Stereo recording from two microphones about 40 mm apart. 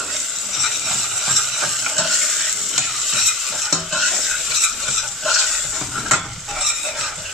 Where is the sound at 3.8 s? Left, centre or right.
Centre.